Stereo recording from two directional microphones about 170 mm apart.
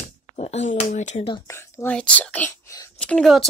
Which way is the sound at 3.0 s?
5° left (ahead or behind).